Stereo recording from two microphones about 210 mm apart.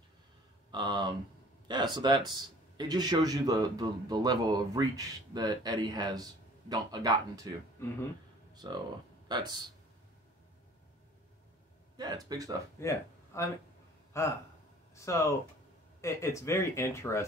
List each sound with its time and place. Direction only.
0.7 s speech: 20° right (ahead or behind)
7.8 s speech: 10° left (ahead or behind)
8.6 s speech: 20° right (ahead or behind)
12.0 s speech: 20° right (ahead or behind)
12.8 s speech: 15° left (ahead or behind)